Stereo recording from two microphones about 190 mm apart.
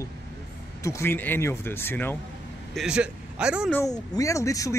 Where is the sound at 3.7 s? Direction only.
15° left (ahead or behind).